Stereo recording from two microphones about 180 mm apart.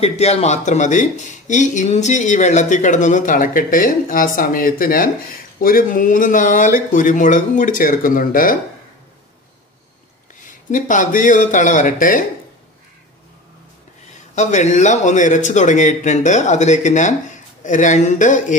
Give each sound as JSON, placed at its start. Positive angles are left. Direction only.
{"t": 0.0, "sound": "speech", "side_deg": 35}
{"t": 10.7, "sound": "speech", "side_deg": 45}
{"t": 14.3, "sound": "speech", "side_deg": 40}